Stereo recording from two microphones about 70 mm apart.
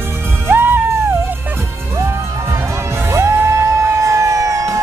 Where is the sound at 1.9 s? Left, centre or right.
Right.